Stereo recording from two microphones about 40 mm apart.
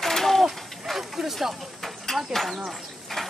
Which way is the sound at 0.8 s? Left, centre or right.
Centre.